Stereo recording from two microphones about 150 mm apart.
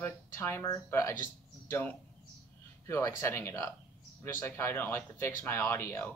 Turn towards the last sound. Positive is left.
turn(degrees=15)  # may be behind; listen again after turning